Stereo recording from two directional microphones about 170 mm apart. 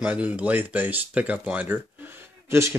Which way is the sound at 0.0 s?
10° right (ahead or behind).